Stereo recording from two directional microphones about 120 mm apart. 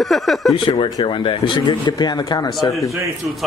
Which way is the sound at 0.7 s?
40° left (ahead or behind).